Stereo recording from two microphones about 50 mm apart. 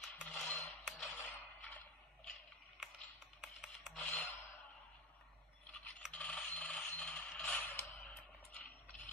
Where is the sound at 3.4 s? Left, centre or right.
Centre.